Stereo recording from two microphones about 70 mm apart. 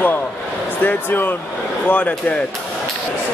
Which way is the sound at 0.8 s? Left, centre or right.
Left.